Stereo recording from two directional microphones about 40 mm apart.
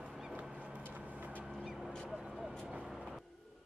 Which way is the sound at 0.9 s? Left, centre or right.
Right.